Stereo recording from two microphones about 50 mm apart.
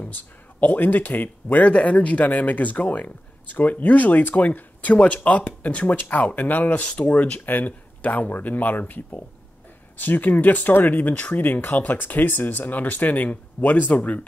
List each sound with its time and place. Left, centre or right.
0.0 s speech: left
1.7 s speech: left
5.0 s speech: left